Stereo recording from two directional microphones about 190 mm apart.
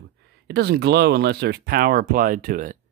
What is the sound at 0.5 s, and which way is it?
Speech, 55° right (ahead or behind).